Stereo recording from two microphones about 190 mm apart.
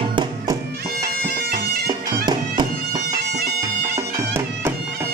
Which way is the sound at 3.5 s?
15° right (ahead or behind).